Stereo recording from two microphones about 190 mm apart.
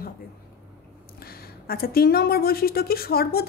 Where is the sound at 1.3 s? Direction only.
55° left (ahead or behind).